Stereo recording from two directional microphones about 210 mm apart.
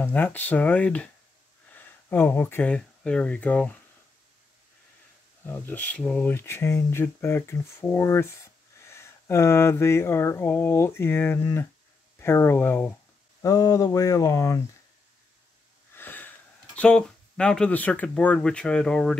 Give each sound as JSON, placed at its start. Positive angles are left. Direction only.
{"t": 0.0, "sound": "speech", "side_deg": 10}
{"t": 5.4, "sound": "speech", "side_deg": 10}
{"t": 15.9, "sound": "speech", "side_deg": 10}